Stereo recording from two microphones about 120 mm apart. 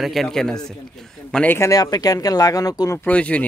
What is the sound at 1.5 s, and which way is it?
Speech, 25° left (ahead or behind).